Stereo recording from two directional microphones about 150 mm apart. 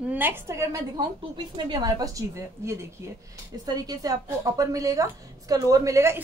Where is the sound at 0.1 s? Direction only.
15° right (ahead or behind).